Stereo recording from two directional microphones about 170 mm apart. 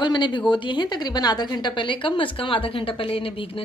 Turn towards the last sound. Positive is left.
turn(degrees=30)  # may be behind; listen again after turning